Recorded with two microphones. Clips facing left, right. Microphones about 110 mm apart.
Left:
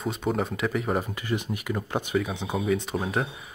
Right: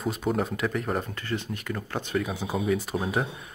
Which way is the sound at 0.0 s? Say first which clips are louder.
Even; centre (ahead or behind).